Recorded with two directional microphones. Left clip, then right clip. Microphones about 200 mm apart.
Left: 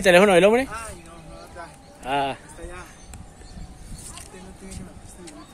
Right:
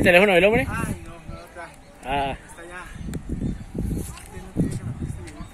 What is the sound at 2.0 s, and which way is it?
Clip-clop, 5° left (ahead or behind).